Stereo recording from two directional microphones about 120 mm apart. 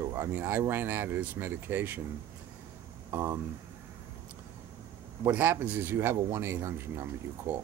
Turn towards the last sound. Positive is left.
turn(degrees=-20)  # may be behind; listen again after turning